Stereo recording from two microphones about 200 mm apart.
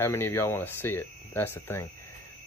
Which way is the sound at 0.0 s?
10° left (ahead or behind).